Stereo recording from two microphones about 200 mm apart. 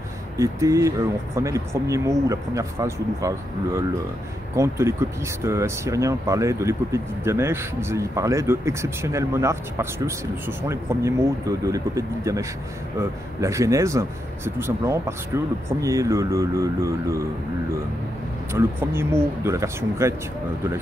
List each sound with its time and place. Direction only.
0.4 s speech: 15° right (ahead or behind)
18.5 s speech: 10° right (ahead or behind)